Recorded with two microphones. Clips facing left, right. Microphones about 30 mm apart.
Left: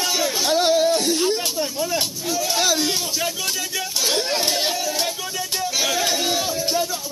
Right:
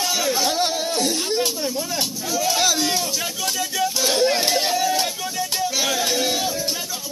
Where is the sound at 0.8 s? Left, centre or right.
Centre.